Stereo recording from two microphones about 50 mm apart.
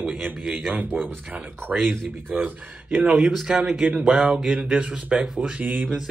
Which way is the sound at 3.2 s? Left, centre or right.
Centre.